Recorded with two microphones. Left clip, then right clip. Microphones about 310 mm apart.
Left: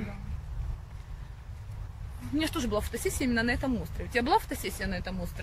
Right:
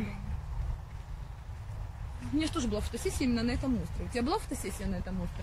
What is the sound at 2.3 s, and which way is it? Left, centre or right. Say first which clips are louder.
Speech: left 3 dB; left.